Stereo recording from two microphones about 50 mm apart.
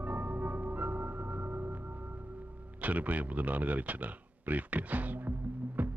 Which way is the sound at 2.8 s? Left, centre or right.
Right.